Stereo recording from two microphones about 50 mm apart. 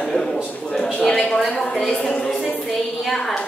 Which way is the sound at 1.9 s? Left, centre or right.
Left.